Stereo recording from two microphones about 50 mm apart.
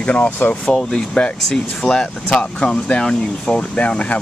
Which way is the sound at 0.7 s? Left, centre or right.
Centre.